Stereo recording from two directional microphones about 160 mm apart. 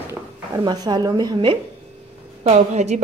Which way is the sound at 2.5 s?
45° right (ahead or behind).